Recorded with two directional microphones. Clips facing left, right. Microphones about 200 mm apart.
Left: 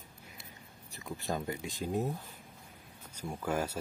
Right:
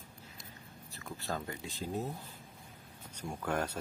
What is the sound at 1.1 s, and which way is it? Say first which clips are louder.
Speech: left 4 dB; 15° left (ahead or behind).